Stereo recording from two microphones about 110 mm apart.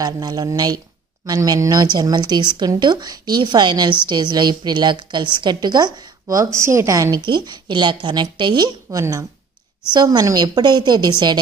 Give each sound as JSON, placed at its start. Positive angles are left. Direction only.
{"t": 0.0, "sound": "a woman's voice", "side_deg": -35}
{"t": 7.2, "sound": "a woman's voice", "side_deg": -45}